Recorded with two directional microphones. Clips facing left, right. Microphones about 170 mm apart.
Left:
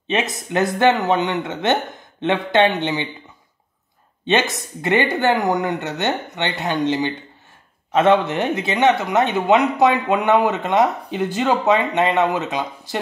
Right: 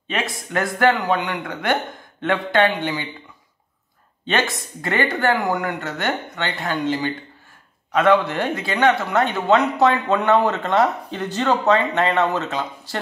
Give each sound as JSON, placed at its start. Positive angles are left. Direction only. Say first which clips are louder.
{"t": 0.1, "sound": "speech", "louder": "left 3 dB", "side_deg": 20}
{"t": 4.3, "sound": "speech", "louder": "left 3 dB", "side_deg": 20}